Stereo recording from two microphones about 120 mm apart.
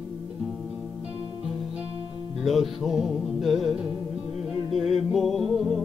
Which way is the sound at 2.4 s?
Centre (ahead or behind).